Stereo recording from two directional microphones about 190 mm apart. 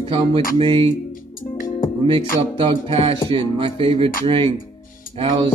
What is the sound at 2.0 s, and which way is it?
Music, 30° right (ahead or behind).